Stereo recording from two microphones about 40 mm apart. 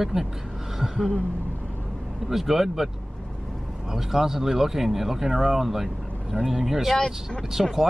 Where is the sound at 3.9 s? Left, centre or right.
Centre.